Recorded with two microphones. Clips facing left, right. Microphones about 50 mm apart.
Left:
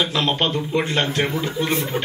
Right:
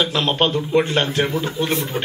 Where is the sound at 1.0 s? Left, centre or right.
Left.